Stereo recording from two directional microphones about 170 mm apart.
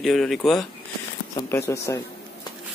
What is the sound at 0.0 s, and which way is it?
Speech, centre (ahead or behind).